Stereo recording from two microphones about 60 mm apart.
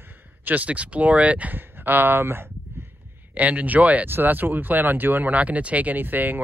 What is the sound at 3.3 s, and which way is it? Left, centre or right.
Speech, right.